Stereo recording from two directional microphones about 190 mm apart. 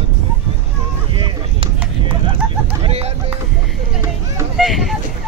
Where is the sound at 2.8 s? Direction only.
35° right (ahead or behind).